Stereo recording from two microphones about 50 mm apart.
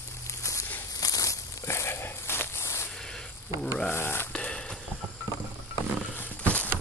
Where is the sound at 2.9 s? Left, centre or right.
Centre.